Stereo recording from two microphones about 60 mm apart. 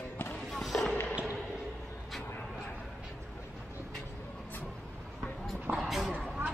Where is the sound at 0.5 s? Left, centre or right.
Centre.